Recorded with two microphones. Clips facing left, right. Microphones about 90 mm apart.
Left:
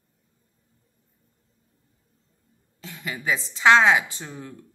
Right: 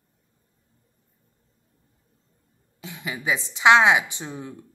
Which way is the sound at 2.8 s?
15° right (ahead or behind).